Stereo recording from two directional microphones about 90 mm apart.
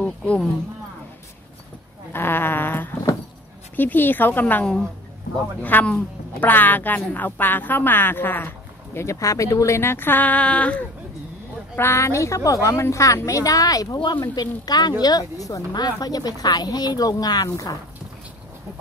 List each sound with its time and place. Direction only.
0.0 s speech: 10° left (ahead or behind)
2.1 s a sound: 25° left (ahead or behind)
3.7 s a woman's voice: 20° left (ahead or behind)
11.7 s a woman's voice: 25° left (ahead or behind); by 13.9 s 45° left (ahead or behind)
13.9 s speech: 65° left (ahead or behind)
14.2 s speech: 45° left (ahead or behind)